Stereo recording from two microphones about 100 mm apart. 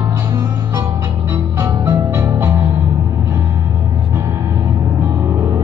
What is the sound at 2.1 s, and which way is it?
Music, 30° right (ahead or behind).